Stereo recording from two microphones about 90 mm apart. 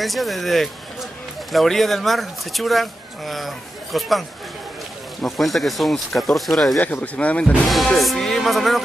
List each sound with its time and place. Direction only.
0.0 s speech: centre (ahead or behind)
5.2 s speech: centre (ahead or behind)
6.8 s speech: 20° left (ahead or behind)
7.6 s speech: centre (ahead or behind)